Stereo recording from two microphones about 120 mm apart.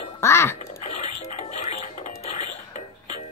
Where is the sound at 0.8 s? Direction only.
65° left (ahead or behind).